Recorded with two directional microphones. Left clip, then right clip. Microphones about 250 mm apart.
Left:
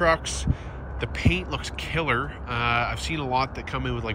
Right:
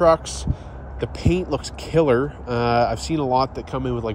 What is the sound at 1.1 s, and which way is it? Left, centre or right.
Speech, right.